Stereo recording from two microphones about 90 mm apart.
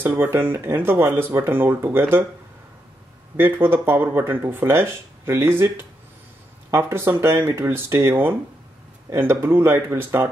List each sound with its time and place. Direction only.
0.0 s speech: 25° right (ahead or behind)
3.3 s speech: 25° right (ahead or behind)